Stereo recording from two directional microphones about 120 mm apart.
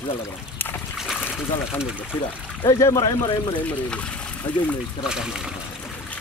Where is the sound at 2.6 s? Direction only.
30° left (ahead or behind).